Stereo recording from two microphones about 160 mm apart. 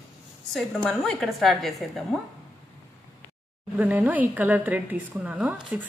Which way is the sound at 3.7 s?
10° right (ahead or behind).